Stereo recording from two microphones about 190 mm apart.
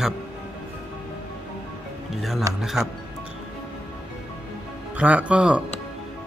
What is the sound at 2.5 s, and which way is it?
Speech, centre (ahead or behind).